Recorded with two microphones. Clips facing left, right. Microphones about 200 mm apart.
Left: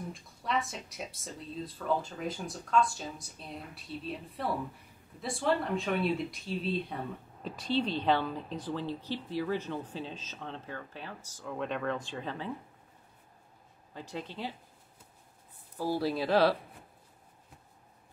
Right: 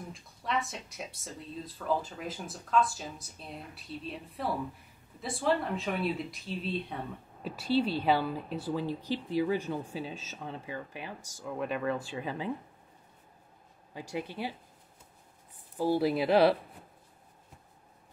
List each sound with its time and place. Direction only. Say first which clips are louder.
0.1 s a woman's voice: right 1 dB; centre (ahead or behind)
13.9 s a woman's voice: right 3 dB; 10° right (ahead or behind)
15.8 s a woman's voice: right 4 dB; 15° right (ahead or behind)